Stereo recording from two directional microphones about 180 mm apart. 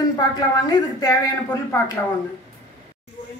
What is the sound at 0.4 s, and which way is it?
Speech, 20° left (ahead or behind).